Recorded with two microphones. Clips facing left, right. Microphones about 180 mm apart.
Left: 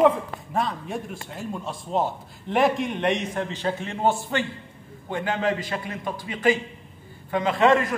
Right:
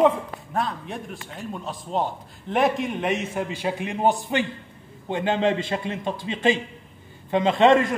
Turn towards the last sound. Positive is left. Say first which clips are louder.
# right 2 dB
turn(degrees=-25)  # may be behind; listen again after turning